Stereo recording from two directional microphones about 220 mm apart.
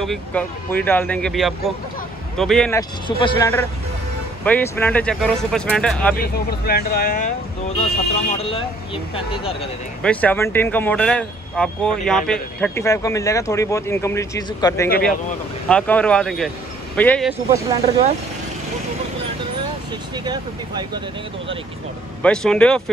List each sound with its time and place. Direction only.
0.0 s speech: 5° left (ahead or behind)
3.1 s speech: 20° left (ahead or behind); by 6.1 s 5° left (ahead or behind)
6.1 s speech: 45° left (ahead or behind); by 9.7 s 25° left (ahead or behind)
10.0 s speech: 10° left (ahead or behind)
17.3 s speech: 10° right (ahead or behind)
22.2 s speech: 5° left (ahead or behind)